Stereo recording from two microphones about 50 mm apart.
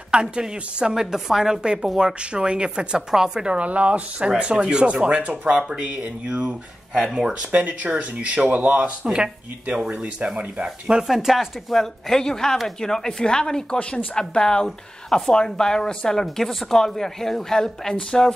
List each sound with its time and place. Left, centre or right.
0.1 s a woman's voice: centre
3.5 s speech: right
5.5 s a woman's voice: centre
5.8 s speech: right
6.9 s speech: centre
7.2 s speech: right
11.1 s speech: centre
11.7 s speech: centre